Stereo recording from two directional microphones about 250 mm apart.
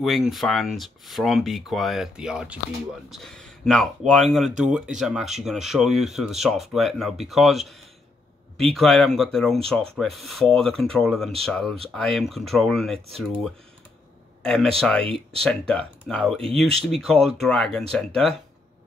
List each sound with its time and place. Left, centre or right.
0.0 s speech: centre
8.7 s speech: centre
14.4 s speech: centre
15.0 s speech: right
15.4 s speech: centre